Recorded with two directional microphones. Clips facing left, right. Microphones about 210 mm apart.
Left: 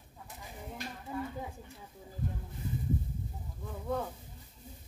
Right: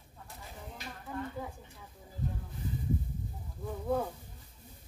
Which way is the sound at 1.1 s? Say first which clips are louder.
Left 1 dB; 10° left (ahead or behind).